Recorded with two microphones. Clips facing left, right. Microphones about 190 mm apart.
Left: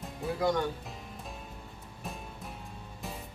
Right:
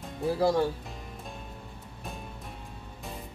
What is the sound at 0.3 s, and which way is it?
Speech, 30° right (ahead or behind).